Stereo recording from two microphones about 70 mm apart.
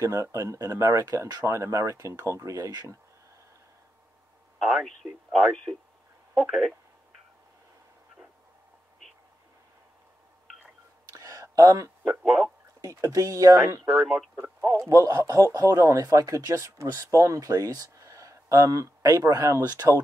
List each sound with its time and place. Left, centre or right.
0.0 s speech: right
4.6 s speech: centre
11.1 s a sound: right
12.1 s speech: centre
12.8 s speech: right
14.0 s speech: centre
14.8 s speech: right